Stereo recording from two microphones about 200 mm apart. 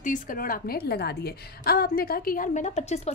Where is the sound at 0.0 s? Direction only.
40° left (ahead or behind).